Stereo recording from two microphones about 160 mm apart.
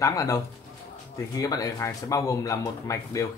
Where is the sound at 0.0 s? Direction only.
20° left (ahead or behind).